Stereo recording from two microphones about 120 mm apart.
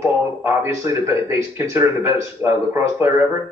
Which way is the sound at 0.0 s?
20° right (ahead or behind).